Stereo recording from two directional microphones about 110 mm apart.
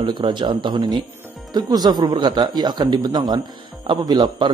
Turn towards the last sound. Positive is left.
turn(degrees=-40)  # may be behind; listen again after turning